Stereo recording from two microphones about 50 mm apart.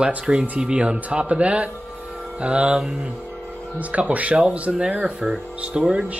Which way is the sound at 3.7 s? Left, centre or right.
Right.